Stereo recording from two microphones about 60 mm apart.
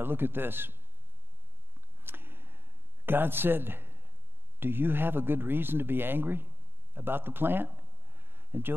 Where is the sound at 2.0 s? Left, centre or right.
Right.